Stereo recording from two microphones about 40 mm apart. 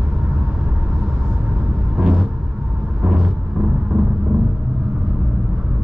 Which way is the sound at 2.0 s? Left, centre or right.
Centre.